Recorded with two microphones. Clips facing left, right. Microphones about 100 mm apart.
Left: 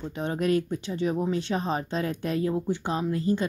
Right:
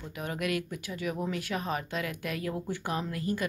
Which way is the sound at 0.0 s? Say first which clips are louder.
Left 6 dB; 30° left (ahead or behind).